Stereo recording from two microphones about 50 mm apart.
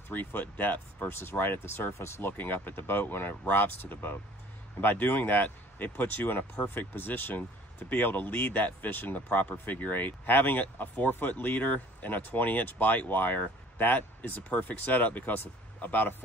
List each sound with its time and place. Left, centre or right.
0.1 s speech: left
2.0 s speech: left
2.2 s speech: left